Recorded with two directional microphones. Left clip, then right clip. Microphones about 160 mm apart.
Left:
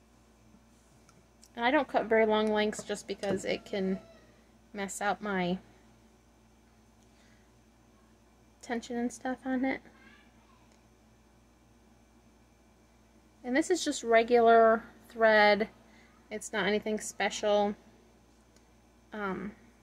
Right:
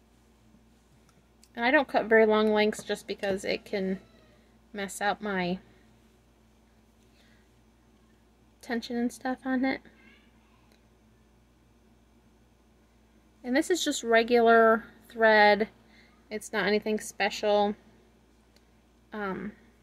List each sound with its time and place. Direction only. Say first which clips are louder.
1.5 s a woman's voice: right 3 dB; 25° right (ahead or behind)
8.5 s speech: right 3 dB; 20° right (ahead or behind)
13.4 s a woman's voice: right 2 dB; 20° right (ahead or behind)
19.0 s speech: right 2 dB; 15° right (ahead or behind)